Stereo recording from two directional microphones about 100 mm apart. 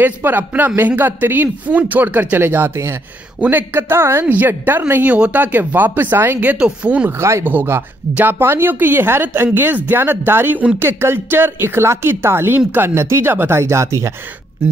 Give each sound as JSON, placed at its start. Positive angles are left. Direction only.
{"t": 0.0, "sound": "a woman's voice", "side_deg": -20}
{"t": 7.2, "sound": "a woman's voice", "side_deg": -30}